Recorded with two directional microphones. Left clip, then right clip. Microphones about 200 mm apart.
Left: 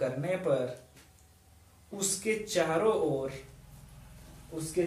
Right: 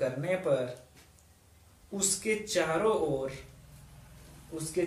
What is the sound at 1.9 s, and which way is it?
Speech, 15° right (ahead or behind).